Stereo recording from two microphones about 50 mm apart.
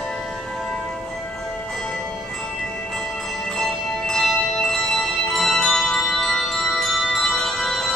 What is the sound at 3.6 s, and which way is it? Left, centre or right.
Music, centre.